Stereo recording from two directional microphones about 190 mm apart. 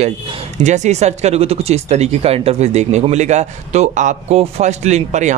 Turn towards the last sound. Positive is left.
turn(degrees=-40)  # may be behind; listen again after turning